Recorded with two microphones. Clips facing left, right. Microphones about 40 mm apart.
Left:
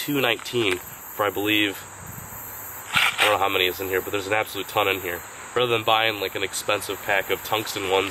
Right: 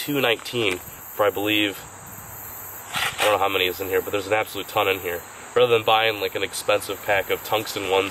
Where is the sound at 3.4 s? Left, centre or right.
Centre.